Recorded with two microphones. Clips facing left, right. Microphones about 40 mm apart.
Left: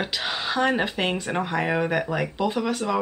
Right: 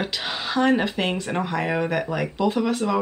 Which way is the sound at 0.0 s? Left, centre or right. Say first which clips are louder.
Even; centre.